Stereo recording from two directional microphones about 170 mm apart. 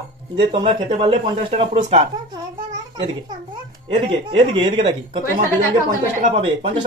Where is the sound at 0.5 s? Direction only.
30° right (ahead or behind).